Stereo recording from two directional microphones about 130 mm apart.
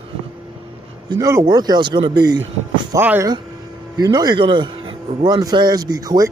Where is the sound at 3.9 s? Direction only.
30° right (ahead or behind).